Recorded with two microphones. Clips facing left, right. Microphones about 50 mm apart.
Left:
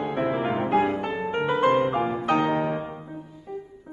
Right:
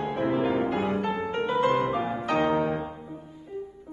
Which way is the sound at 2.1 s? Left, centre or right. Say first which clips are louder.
Left 2 dB; centre.